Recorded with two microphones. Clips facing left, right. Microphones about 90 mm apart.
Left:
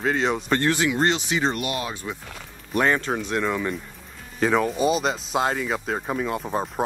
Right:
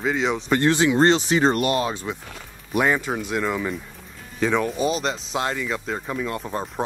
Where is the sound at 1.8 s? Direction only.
25° right (ahead or behind).